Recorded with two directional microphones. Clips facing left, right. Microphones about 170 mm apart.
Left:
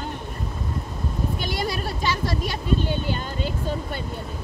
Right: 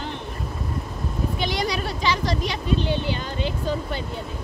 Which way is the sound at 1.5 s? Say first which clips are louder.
Right 1 dB; 50° left (ahead or behind).